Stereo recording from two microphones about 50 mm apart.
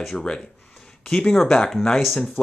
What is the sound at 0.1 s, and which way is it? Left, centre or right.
Speech, centre.